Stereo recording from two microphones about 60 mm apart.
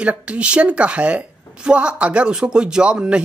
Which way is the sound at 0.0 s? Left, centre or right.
Right.